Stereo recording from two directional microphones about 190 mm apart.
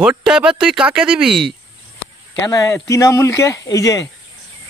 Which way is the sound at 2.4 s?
20° left (ahead or behind).